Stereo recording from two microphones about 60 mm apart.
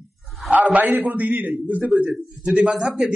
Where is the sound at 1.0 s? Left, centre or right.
Right.